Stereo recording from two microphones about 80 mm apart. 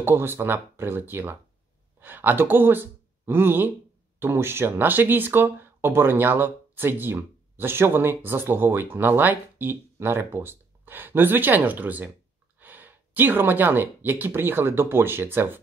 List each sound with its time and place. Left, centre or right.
0.0 s speech: right